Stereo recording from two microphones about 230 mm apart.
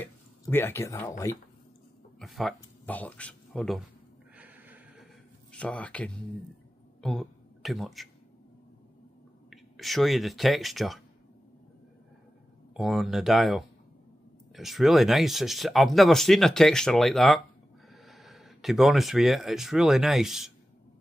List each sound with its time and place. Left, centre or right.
0.0 s speech: centre
2.1 s speech: centre
4.4 s snort: centre
5.5 s speech: centre
9.5 s speech: centre
12.7 s speech: centre